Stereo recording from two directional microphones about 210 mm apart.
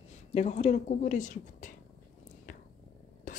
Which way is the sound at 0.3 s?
30° left (ahead or behind).